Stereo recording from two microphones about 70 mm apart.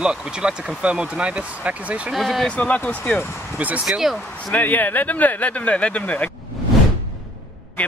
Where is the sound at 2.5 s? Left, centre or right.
Centre.